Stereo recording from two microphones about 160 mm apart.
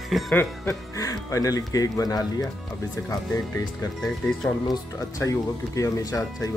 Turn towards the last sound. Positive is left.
turn(degrees=20)  # may be behind; listen again after turning